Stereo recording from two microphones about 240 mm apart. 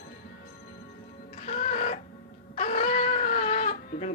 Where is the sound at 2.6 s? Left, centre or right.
Left.